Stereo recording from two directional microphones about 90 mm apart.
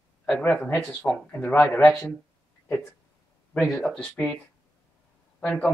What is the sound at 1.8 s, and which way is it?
Speech, 10° left (ahead or behind).